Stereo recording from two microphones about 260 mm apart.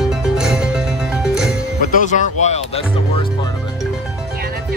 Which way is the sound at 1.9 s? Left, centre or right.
Left.